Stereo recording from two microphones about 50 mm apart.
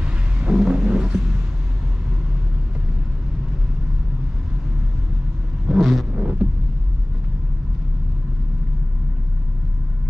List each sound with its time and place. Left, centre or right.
0.0 s thunder: right
0.7 s a sound: centre
0.9 s vehicle: right
5.8 s vehicle: centre
6.1 s music: right